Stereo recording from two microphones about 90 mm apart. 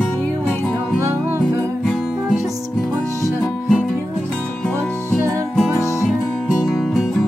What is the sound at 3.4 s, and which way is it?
Music, 10° left (ahead or behind).